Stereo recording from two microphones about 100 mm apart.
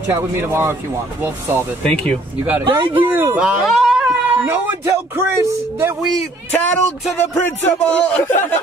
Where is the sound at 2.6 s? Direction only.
55° right (ahead or behind).